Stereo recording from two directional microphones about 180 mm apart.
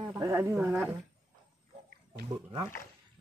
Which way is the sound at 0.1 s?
15° right (ahead or behind).